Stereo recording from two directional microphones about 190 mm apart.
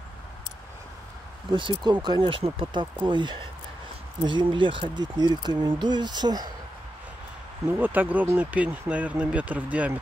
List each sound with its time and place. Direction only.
1.5 s speech: 25° right (ahead or behind)
7.8 s speech: 10° right (ahead or behind)